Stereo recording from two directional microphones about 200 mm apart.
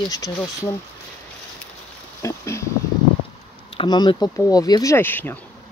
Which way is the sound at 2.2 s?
15° left (ahead or behind).